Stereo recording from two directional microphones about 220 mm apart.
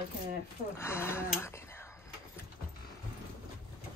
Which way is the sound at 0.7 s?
10° left (ahead or behind).